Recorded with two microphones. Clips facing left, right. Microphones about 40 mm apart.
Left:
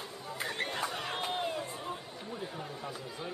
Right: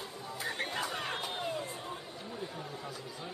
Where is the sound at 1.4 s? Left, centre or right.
Centre.